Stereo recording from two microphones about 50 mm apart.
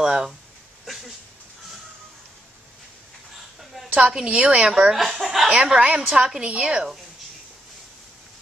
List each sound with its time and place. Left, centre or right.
0.0 s speech: centre
3.9 s a woman's voice: centre
4.9 s speech: centre
5.5 s a woman's voice: centre